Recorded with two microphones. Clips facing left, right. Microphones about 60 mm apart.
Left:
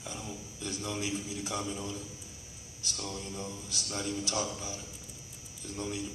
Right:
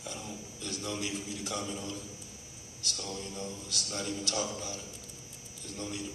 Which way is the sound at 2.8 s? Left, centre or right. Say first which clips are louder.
Even; centre.